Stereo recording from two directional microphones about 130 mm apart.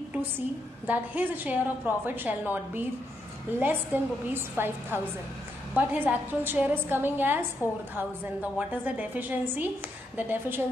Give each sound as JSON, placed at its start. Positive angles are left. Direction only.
{"t": 0.8, "sound": "a woman's voice", "side_deg": -15}